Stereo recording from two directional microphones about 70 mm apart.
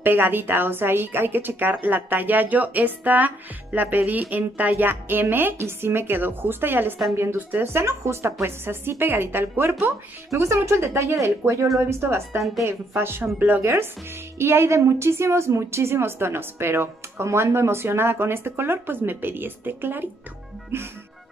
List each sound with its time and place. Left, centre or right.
0.0 s a woman's voice: right
10.3 s a woman's voice: right